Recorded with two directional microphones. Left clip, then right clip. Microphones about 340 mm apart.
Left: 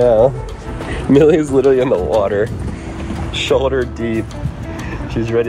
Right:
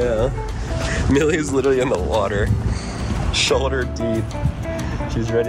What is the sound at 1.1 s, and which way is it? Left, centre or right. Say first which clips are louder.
Speech: left 8 dB; centre.